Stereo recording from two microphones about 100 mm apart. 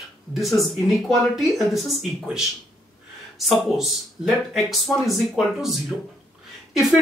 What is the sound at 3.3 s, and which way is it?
Speech, centre (ahead or behind).